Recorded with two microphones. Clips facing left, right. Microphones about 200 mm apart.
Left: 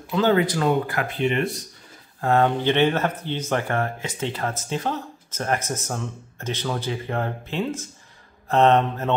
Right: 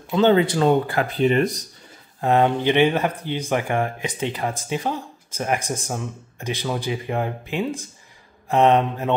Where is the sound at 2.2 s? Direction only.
15° right (ahead or behind).